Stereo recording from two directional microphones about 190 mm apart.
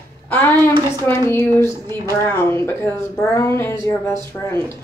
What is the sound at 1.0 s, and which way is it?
Speech, 15° left (ahead or behind).